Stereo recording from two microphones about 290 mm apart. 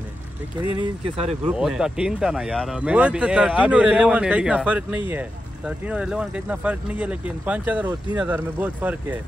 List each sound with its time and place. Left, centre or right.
0.7 s speech: right
1.5 s speech: centre